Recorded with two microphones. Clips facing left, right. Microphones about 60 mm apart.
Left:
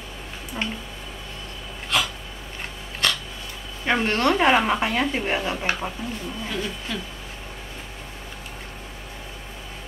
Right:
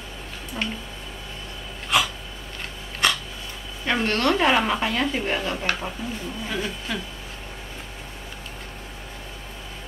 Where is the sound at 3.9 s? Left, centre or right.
Centre.